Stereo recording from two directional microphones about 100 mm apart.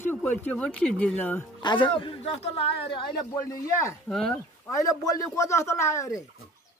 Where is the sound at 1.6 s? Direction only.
55° left (ahead or behind).